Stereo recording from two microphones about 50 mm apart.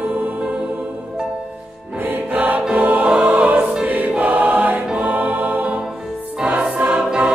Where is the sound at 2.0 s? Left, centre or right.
Right.